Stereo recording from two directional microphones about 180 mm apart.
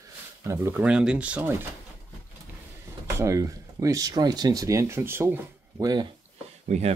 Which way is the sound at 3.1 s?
15° right (ahead or behind).